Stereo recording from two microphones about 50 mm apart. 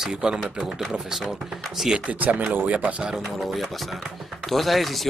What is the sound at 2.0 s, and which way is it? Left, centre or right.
Speech, right.